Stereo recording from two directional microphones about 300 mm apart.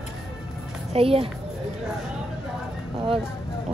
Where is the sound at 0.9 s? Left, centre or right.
Centre.